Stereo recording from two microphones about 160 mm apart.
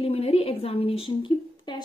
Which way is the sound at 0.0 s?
40° left (ahead or behind).